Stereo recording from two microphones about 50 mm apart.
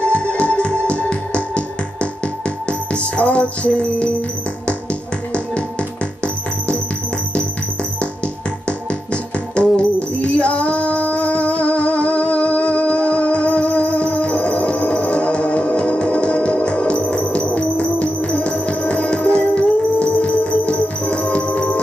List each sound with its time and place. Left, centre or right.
0.0 s music: left
3.2 s music: left
5.3 s music: left
8.6 s music: left